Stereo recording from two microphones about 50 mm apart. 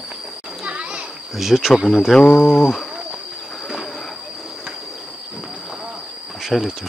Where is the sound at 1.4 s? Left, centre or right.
Centre.